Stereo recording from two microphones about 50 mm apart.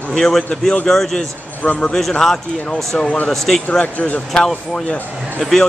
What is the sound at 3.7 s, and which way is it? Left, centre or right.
Speech, left.